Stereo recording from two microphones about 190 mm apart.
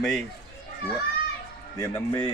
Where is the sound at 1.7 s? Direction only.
20° left (ahead or behind).